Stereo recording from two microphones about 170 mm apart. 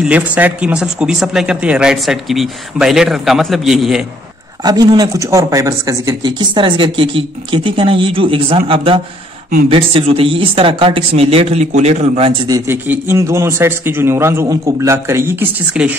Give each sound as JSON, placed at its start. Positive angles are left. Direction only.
{"t": 0.0, "sound": "speech", "side_deg": -10}
{"t": 4.6, "sound": "speech", "side_deg": -20}
{"t": 12.4, "sound": "a man's voice", "side_deg": -15}